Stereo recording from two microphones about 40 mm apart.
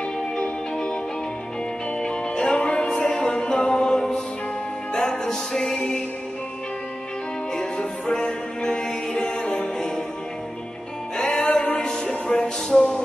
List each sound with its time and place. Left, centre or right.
0.4 s music: left
2.0 s music: centre
7.5 s music: centre
11.1 s music: left